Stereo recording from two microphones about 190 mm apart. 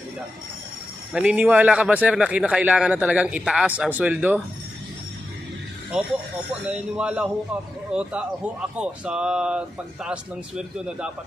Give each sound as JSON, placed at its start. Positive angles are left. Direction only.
{"t": 1.1, "sound": "a man's voice", "side_deg": -5}
{"t": 6.5, "sound": "speech", "side_deg": -5}